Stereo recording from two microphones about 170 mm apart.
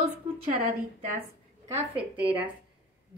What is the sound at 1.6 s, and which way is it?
Speech, 10° right (ahead or behind).